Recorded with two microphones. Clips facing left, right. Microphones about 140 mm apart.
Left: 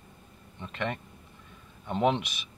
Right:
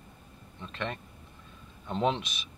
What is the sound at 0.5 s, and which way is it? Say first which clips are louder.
Speech: left 3 dB; 15° left (ahead or behind).